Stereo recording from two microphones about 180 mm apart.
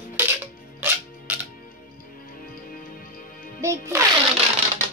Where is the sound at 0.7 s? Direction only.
10° right (ahead or behind).